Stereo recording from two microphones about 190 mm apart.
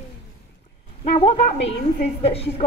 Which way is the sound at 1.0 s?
35° left (ahead or behind).